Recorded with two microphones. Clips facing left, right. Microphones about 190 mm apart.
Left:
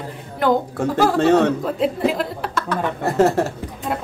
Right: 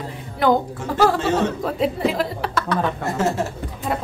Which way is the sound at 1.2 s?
65° left (ahead or behind).